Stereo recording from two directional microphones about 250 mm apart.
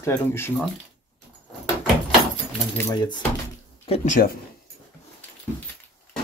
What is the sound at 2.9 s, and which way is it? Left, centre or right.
Speech, centre.